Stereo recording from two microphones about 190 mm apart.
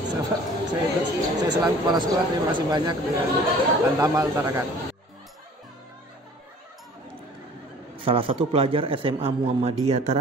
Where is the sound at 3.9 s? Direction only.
20° right (ahead or behind).